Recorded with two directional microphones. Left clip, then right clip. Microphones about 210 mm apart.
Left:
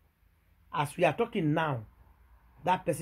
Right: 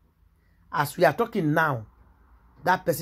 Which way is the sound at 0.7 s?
5° right (ahead or behind).